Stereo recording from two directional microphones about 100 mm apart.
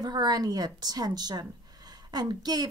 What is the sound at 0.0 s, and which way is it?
A woman's voice, 45° right (ahead or behind).